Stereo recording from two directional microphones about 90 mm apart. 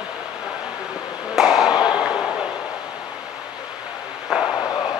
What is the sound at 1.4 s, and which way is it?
Chop, 5° right (ahead or behind).